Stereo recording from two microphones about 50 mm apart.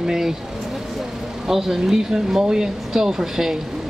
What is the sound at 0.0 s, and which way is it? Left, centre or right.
Vehicle, centre.